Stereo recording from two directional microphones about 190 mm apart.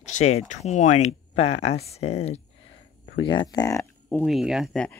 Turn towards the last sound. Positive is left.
turn(degrees=5)  # may be behind; listen again after turning